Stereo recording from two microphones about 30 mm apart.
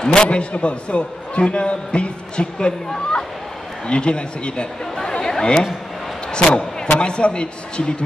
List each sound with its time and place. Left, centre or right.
0.0 s a man's voice: left
3.8 s a man's voice: left